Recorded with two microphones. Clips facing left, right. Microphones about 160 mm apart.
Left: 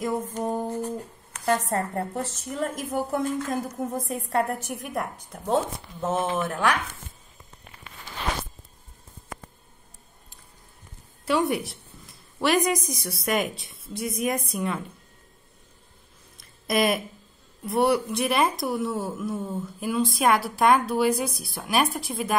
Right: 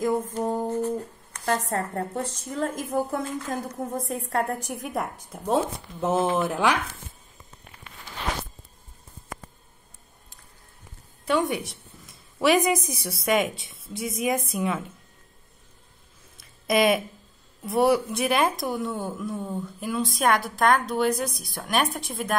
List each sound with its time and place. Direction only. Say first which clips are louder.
0.4 s music: right 1 dB; centre (ahead or behind)
0.7 s speech: right 3 dB; 10° left (ahead or behind); by 6.7 s 15° right (ahead or behind)
11.2 s a woman's voice: left 1 dB; centre (ahead or behind)
16.3 s a sound: right 2 dB; centre (ahead or behind)
17.6 s speech: right 1 dB; centre (ahead or behind)